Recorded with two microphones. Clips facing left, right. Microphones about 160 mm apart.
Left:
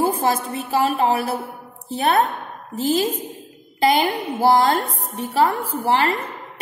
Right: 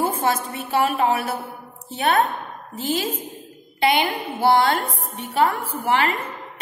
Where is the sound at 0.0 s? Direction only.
35° left (ahead or behind).